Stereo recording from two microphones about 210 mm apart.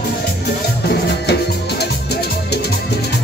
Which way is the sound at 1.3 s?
50° left (ahead or behind).